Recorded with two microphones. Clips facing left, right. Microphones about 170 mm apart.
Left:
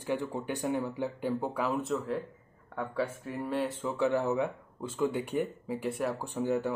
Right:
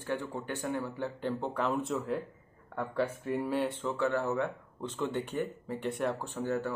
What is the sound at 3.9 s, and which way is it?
Speech, 15° left (ahead or behind).